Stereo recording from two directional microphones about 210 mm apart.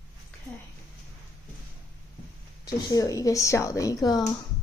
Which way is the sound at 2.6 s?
15° left (ahead or behind).